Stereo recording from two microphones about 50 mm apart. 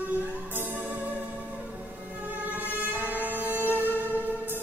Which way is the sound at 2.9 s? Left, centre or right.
Right.